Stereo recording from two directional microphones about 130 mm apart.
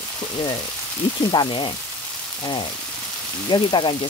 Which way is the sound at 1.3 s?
40° left (ahead or behind).